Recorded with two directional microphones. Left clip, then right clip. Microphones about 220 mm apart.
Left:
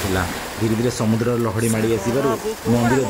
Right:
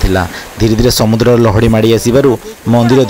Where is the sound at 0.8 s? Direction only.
35° right (ahead or behind).